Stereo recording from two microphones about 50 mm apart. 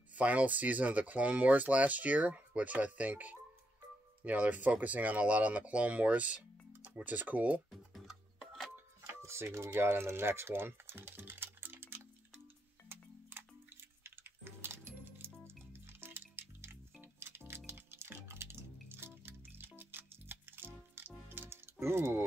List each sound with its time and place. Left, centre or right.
0.1 s speech: right
7.7 s music: centre
9.0 s speech: right
12.8 s music: right
21.7 s speech: right